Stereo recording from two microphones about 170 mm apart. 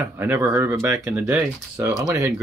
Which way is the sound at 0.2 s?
10° right (ahead or behind).